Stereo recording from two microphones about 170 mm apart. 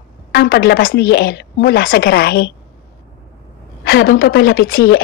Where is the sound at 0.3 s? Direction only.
90° left; by 2.5 s 70° left (ahead or behind).